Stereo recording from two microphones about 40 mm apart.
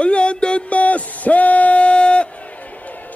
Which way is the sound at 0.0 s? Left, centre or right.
Left.